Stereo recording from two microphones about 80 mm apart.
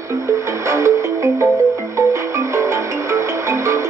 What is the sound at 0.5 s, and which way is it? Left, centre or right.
Music, right.